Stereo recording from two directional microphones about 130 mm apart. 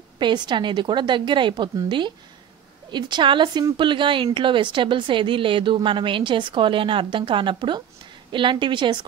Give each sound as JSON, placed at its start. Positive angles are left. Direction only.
{"t": 0.2, "sound": "a woman's voice", "side_deg": -35}